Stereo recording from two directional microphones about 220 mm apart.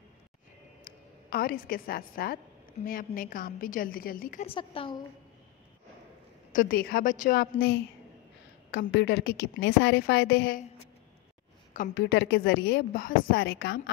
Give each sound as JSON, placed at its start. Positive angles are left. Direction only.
{"t": 0.8, "sound": "a woman's voice", "side_deg": 40}
{"t": 4.5, "sound": "a woman's voice", "side_deg": 25}
{"t": 6.5, "sound": "a woman's voice", "side_deg": 40}
{"t": 11.7, "sound": "a woman's voice", "side_deg": 45}